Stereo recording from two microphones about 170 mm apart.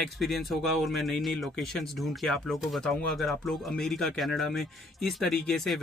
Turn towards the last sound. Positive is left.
turn(degrees=0)  # may be behind; listen again after turning